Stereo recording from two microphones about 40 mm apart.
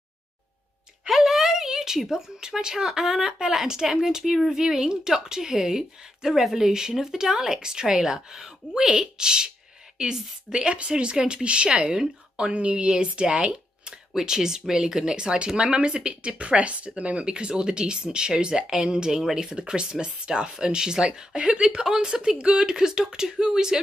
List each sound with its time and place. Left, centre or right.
1.2 s speech: centre
4.5 s a woman's voice: centre
19.5 s a woman's voice: right